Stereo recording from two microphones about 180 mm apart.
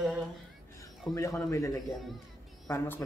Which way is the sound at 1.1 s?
15° left (ahead or behind).